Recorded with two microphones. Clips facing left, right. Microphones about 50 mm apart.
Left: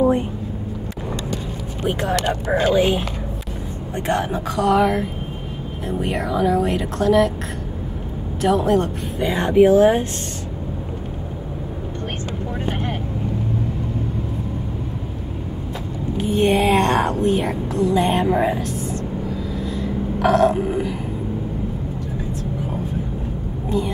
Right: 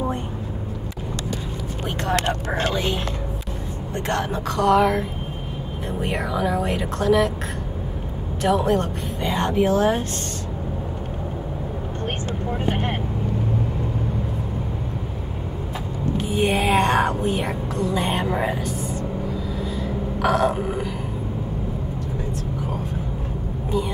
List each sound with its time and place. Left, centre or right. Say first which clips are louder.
1.9 s a woman's voice: left 4 dB; centre
2.2 s speech: left 4 dB; right
2.7 s a woman's voice: left 7 dB; centre
4.1 s speech: left 3 dB; centre
8.4 s a woman's voice: left 2 dB; centre
16.2 s speech: left 5 dB; centre
19.5 s burping: left 2 dB; centre